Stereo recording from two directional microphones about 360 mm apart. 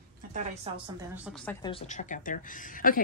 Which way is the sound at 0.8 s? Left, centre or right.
Centre.